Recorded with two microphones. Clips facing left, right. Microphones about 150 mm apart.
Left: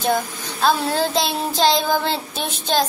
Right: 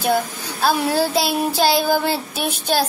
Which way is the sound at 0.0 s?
5° right (ahead or behind).